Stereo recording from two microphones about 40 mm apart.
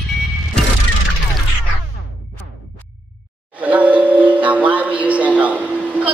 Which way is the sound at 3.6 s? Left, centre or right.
Right.